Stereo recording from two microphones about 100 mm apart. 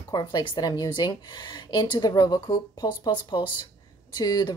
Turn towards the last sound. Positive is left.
turn(degrees=45)  # may be behind; listen again after turning